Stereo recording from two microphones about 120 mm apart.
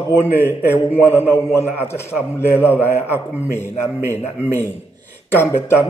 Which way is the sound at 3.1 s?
20° left (ahead or behind).